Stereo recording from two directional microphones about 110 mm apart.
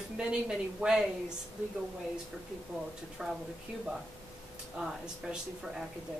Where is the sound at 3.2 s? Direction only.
5° right (ahead or behind).